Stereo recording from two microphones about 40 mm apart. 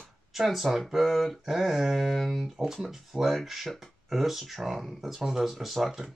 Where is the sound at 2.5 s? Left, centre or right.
Centre.